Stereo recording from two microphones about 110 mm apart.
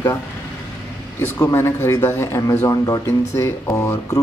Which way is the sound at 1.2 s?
25° left (ahead or behind).